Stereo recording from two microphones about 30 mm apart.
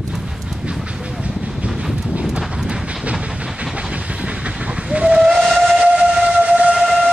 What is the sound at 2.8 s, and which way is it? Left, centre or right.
Vehicle, right.